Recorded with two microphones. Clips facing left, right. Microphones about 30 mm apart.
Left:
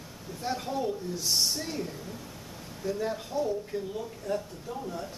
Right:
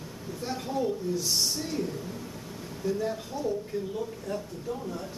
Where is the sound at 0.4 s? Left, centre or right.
Centre.